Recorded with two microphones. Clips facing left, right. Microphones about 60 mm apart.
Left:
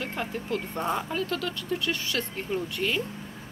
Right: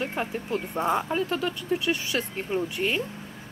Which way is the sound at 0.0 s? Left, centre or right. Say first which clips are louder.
Right 3 dB; centre.